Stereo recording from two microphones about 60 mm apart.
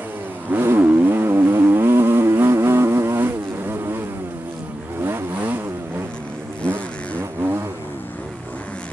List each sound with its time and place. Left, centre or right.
0.5 s vehicle: right
6.7 s vehicle: right